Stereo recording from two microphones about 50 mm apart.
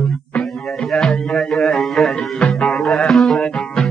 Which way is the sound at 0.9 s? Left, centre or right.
Centre.